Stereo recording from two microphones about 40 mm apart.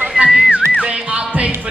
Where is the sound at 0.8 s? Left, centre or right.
Right.